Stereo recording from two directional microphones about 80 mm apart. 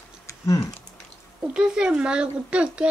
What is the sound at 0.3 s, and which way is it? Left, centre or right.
Typing, left.